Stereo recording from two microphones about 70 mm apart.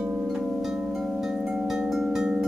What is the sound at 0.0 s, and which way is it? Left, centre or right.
Music, centre.